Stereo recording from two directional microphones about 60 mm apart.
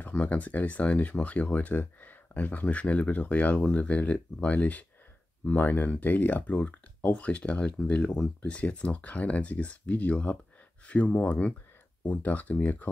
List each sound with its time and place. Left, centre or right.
0.1 s speech: left